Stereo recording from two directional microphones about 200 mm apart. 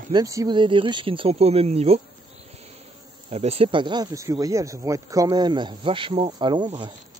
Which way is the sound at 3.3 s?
30° right (ahead or behind).